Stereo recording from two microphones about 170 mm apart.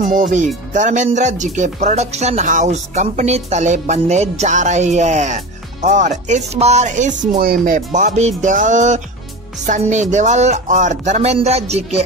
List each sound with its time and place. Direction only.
0.1 s speech: 45° right (ahead or behind)